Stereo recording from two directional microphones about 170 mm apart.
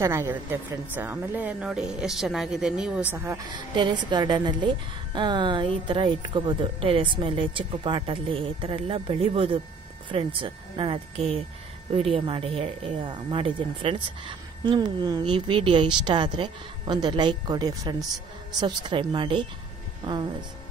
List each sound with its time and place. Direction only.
0.0 s a woman's voice: 15° right (ahead or behind)
3.7 s a woman's voice: 25° right (ahead or behind)